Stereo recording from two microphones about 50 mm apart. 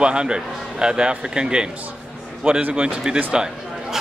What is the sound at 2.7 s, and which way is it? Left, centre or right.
Speech, centre.